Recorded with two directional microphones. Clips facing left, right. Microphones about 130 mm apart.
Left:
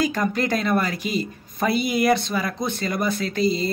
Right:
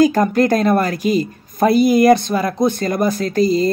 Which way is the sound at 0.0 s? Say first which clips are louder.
Right 9 dB; 45° right (ahead or behind).